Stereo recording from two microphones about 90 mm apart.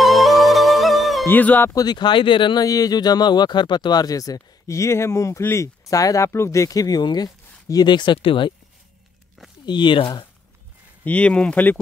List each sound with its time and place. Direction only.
0.0 s music: centre (ahead or behind)
1.2 s speech: 20° left (ahead or behind)
1.7 s speech: 45° left (ahead or behind); by 2.6 s 65° left (ahead or behind)
2.6 s speech: 40° left (ahead or behind); by 8.5 s 70° left (ahead or behind)
9.7 s speech: 60° left (ahead or behind)
11.1 s speech: 15° left (ahead or behind)